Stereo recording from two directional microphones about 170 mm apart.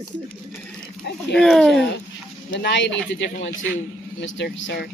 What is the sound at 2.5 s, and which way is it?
Speech, 90° left.